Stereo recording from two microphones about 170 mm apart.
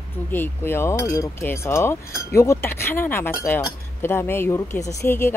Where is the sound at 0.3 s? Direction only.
15° left (ahead or behind).